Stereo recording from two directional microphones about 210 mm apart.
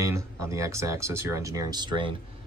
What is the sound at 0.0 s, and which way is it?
Speech, 15° right (ahead or behind).